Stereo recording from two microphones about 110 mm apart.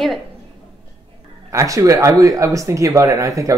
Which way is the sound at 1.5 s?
30° right (ahead or behind).